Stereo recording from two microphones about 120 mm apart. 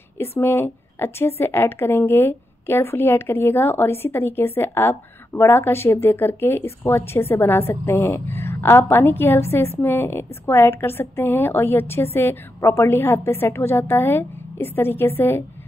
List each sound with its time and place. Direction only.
0.4 s a woman's voice: 20° left (ahead or behind)